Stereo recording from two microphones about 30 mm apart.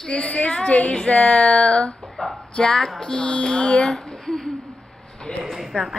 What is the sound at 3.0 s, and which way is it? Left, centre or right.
Music, left.